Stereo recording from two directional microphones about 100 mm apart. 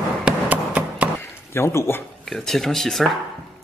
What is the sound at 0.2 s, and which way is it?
Tap, 15° right (ahead or behind).